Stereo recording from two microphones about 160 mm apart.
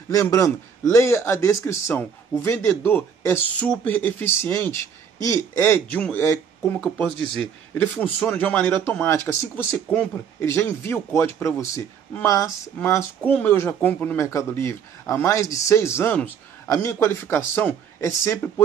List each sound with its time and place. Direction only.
0.1 s speech: 20° left (ahead or behind)